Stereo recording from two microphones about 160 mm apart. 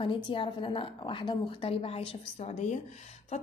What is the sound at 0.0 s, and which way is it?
A woman's voice, 35° left (ahead or behind).